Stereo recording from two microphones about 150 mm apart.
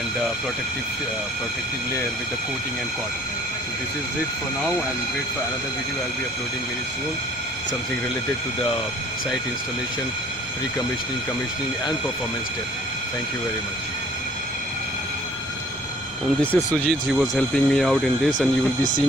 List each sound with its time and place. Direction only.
16.5 s speech: 15° left (ahead or behind)
17.1 s speech: 5° left (ahead or behind)